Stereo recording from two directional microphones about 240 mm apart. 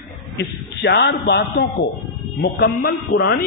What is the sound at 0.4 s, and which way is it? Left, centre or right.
A man's voice, left.